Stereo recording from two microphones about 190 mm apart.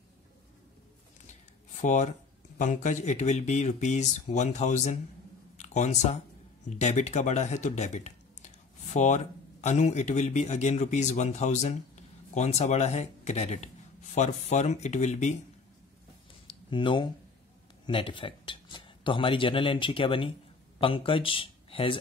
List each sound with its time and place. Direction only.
1.8 s speech: 40° left (ahead or behind)
16.4 s a sound: 25° left (ahead or behind)
17.8 s speech: 25° left (ahead or behind)